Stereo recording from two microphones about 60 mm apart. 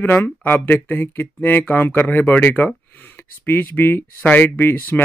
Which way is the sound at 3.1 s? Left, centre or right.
Left.